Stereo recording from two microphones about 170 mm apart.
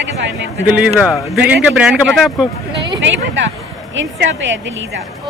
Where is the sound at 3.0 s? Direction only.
90° right.